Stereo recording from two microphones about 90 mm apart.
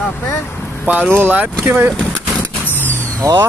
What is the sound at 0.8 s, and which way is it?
Speech, 10° right (ahead or behind).